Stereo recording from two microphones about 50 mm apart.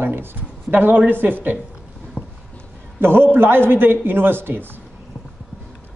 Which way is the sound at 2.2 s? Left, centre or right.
Left.